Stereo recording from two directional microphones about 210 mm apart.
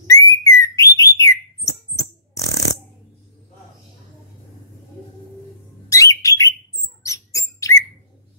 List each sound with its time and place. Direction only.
0.0 s bird: 15° left (ahead or behind)
5.9 s bird: 15° left (ahead or behind)
7.0 s mouse: 15° left (ahead or behind)
7.7 s a sound: 15° left (ahead or behind)